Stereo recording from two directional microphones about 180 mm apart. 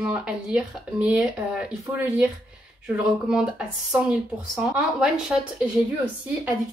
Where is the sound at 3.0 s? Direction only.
5° right (ahead or behind).